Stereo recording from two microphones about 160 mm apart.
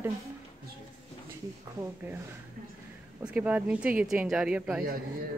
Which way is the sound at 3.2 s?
10° right (ahead or behind).